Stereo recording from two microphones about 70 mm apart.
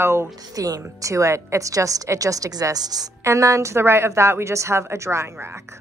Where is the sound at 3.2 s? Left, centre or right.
Right.